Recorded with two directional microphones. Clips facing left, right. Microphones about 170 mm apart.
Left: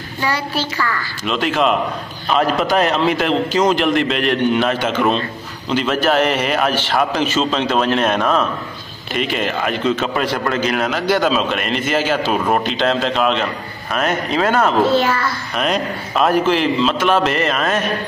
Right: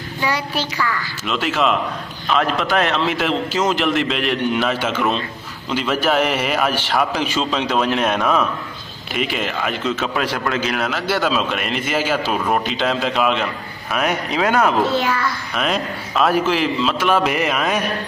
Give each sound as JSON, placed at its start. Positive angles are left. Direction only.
{"t": 0.2, "sound": "a man's voice", "side_deg": -15}
{"t": 1.2, "sound": "a man's voice", "side_deg": 0}
{"t": 3.1, "sound": "a man's voice", "side_deg": 0}
{"t": 12.4, "sound": "a man's voice", "side_deg": 5}
{"t": 12.6, "sound": "a man's voice", "side_deg": -5}
{"t": 15.5, "sound": "a man's voice", "side_deg": 0}